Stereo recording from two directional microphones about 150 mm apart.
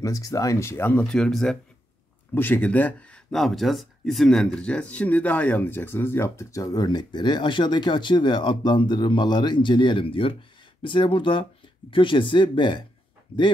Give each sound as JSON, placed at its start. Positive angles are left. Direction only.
{"t": 0.0, "sound": "speech", "side_deg": 25}